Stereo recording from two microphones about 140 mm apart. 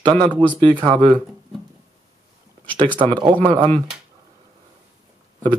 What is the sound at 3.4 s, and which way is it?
Speech, 45° right (ahead or behind).